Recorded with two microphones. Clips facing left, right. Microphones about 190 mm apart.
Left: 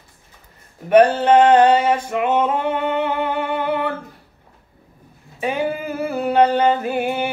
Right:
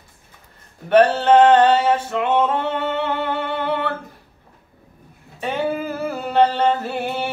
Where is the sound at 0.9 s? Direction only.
10° left (ahead or behind).